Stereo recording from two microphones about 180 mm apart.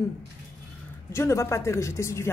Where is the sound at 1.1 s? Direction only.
15° left (ahead or behind).